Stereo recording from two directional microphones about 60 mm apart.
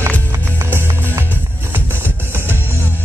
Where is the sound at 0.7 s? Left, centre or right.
Right.